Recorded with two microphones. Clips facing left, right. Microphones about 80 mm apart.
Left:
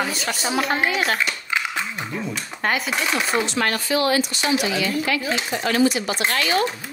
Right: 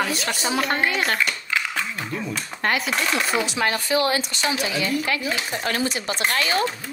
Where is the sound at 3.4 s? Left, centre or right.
Centre.